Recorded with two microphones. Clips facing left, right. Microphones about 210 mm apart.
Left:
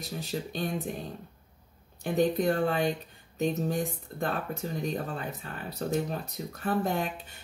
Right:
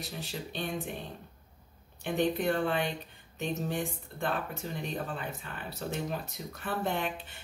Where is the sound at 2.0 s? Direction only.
40° left (ahead or behind).